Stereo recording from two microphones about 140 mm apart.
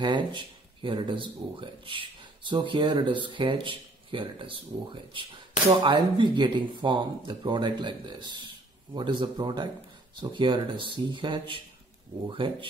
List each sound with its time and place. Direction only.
0.0 s speech: 35° right (ahead or behind)
5.7 s speech: 30° right (ahead or behind)